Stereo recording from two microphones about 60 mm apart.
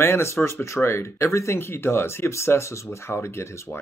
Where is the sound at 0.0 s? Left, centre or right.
Left.